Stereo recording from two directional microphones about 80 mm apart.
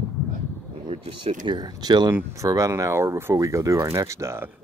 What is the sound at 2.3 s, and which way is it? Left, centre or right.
Speech, right.